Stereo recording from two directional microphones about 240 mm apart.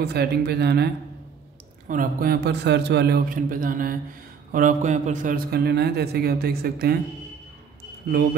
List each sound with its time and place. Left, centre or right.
0.0 s a woman's voice: right
1.9 s a man's voice: right